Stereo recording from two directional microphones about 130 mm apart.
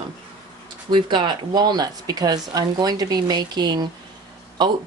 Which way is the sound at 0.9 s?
35° right (ahead or behind).